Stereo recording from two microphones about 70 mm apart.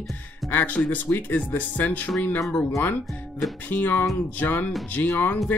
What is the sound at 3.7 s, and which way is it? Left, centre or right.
Speech, left.